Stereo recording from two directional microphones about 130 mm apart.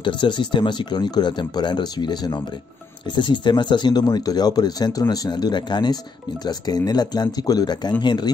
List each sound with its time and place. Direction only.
0.0 s speech: 40° left (ahead or behind)